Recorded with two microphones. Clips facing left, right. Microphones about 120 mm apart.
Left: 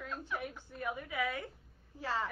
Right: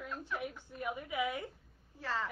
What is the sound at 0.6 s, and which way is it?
Speech, 15° right (ahead or behind).